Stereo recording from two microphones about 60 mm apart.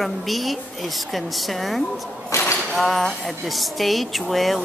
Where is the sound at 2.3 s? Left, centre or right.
Left.